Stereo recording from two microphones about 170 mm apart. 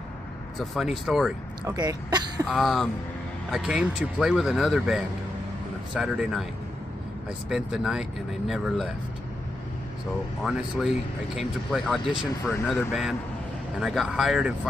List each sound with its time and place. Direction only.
0.6 s speech: centre (ahead or behind)
1.6 s speech: 20° right (ahead or behind)
2.4 s speech: centre (ahead or behind)
7.4 s speech: centre (ahead or behind)
10.4 s speech: 5° right (ahead or behind)